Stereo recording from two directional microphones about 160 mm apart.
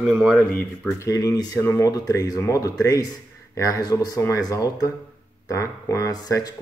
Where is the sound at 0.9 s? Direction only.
20° left (ahead or behind).